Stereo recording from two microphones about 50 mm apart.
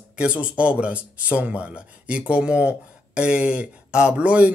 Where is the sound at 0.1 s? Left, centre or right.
Right.